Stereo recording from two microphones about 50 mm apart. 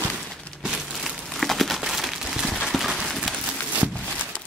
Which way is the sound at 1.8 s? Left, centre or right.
Centre.